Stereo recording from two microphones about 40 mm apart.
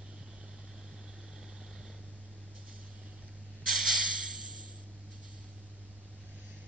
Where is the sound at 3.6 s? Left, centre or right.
Centre.